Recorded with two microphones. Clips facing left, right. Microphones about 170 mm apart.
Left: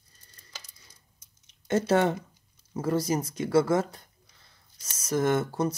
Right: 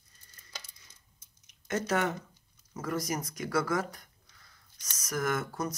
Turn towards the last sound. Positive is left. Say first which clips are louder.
# left 7 dB
turn(degrees=30)  # may be behind; listen again after turning